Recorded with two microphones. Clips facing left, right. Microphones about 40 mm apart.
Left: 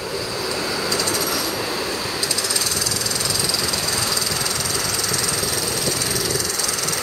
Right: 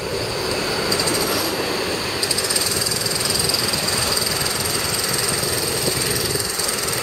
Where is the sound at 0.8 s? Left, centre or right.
Centre.